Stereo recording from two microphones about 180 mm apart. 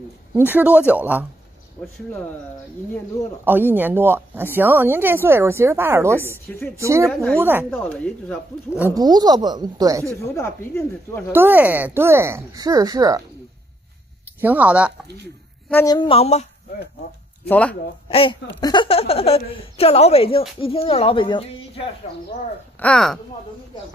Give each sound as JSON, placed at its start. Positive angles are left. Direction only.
{"t": 0.5, "sound": "speech", "side_deg": -10}
{"t": 3.4, "sound": "speech", "side_deg": -10}
{"t": 7.7, "sound": "speech", "side_deg": 5}
{"t": 8.9, "sound": "speech", "side_deg": -20}
{"t": 10.2, "sound": "speech", "side_deg": 15}
{"t": 11.3, "sound": "speech", "side_deg": -10}
{"t": 14.4, "sound": "speech", "side_deg": -10}
{"t": 15.7, "sound": "speech", "side_deg": 20}
{"t": 17.5, "sound": "speech", "side_deg": 10}
{"t": 18.0, "sound": "a woman's voice", "side_deg": 30}
{"t": 22.8, "sound": "speech", "side_deg": 5}